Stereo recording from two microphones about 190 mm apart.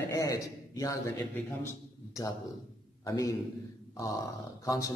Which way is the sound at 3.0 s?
20° left (ahead or behind).